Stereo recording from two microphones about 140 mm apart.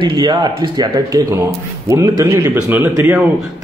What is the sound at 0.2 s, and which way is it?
A man's voice, 35° right (ahead or behind).